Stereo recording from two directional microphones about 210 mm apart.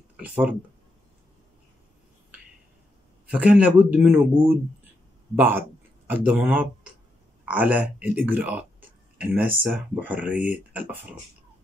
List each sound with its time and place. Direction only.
0.2 s speech: 5° right (ahead or behind)
3.3 s speech: 5° right (ahead or behind)